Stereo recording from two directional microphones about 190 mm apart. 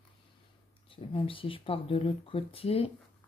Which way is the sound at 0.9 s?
30° left (ahead or behind).